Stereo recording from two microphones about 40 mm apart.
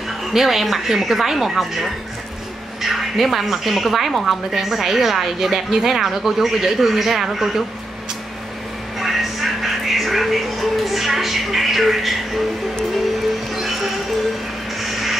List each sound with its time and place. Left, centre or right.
0.3 s speech: centre
9.0 s a sound: centre
13.6 s music: centre
14.8 s crow: centre